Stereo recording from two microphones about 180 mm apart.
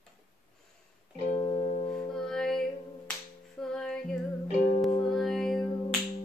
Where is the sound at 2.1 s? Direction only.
5° left (ahead or behind).